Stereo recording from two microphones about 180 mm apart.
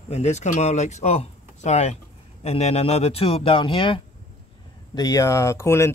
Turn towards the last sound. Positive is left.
turn(degrees=15)  # may be behind; listen again after turning